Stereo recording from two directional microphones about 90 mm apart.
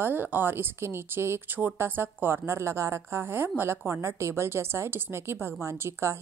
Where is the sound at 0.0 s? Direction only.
20° right (ahead or behind).